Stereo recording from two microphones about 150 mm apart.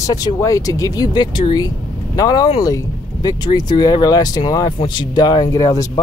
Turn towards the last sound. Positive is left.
turn(degrees=20)  # may be behind; listen again after turning